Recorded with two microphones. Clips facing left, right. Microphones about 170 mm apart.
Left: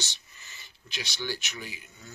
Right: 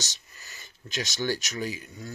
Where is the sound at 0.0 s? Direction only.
40° right (ahead or behind).